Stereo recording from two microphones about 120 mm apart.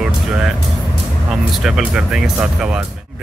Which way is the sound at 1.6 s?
5° right (ahead or behind).